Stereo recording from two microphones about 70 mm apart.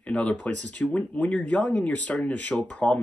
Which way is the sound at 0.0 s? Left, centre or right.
Centre.